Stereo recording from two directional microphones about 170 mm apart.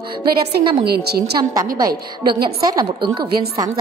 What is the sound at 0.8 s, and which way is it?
A woman's voice, 70° right (ahead or behind).